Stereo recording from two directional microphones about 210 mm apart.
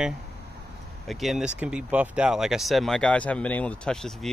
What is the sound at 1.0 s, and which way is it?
Speech, centre (ahead or behind).